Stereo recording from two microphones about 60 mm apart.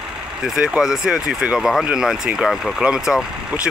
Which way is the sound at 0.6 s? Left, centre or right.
Centre.